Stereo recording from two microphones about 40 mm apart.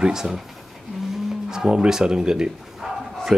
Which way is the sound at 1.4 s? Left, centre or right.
Centre.